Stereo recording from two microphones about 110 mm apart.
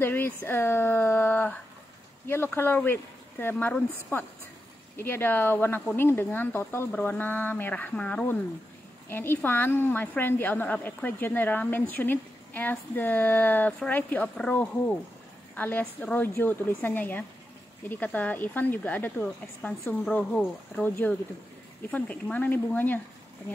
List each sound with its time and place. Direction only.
0.0 s a woman's voice: 20° left (ahead or behind)
21.9 s a woman's voice: 15° left (ahead or behind)